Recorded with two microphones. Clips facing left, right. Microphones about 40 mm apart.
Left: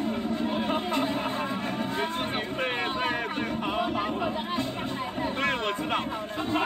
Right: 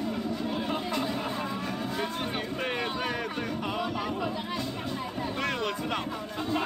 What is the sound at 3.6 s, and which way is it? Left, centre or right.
Music, left.